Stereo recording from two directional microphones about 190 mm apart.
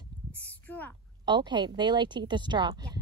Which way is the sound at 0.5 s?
10° left (ahead or behind).